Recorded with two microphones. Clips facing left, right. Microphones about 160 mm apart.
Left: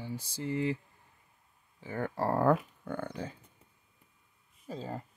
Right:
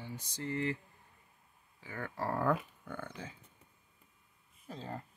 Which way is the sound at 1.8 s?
30° left (ahead or behind).